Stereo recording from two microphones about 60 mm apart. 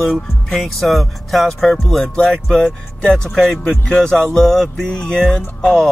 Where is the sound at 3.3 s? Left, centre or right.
Centre.